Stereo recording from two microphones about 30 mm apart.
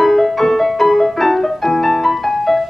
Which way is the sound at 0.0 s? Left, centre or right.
Centre.